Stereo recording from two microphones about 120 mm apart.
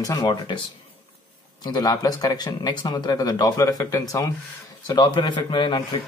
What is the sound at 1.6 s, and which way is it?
A man's voice, 35° left (ahead or behind).